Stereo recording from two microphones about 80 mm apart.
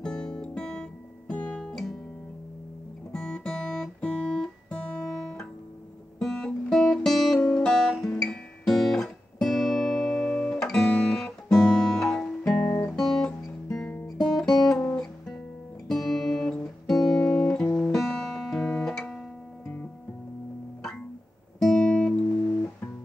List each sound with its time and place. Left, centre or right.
0.0 s guitar: centre
3.1 s guitar: centre
5.1 s music: centre
6.1 s guitar: centre
12.5 s guitar: left
12.9 s music: centre
13.7 s guitar: centre
14.0 s music: centre
15.9 s music: centre
17.9 s music: centre
21.5 s guitar: centre